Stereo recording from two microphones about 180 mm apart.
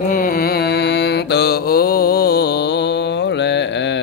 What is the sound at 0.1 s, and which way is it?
Mantra, 55° left (ahead or behind).